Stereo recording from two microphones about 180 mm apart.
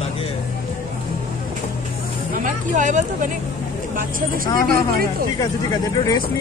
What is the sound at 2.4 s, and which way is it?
Speech, 45° right (ahead or behind).